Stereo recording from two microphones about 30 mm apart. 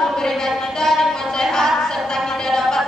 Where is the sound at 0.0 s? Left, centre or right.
Centre.